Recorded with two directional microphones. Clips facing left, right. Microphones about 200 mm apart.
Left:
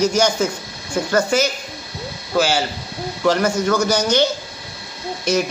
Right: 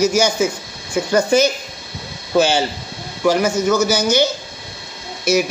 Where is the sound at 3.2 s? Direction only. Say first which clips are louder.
Right 2 dB; 10° right (ahead or behind).